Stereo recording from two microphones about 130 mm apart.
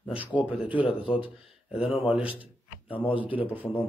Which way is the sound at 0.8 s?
45° left (ahead or behind).